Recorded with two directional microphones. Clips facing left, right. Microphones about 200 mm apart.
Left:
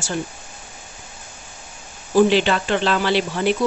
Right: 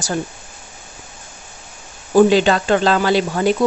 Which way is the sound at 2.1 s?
45° right (ahead or behind).